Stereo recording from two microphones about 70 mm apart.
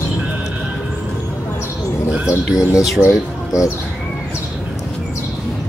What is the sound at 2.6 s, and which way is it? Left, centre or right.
Bird, left.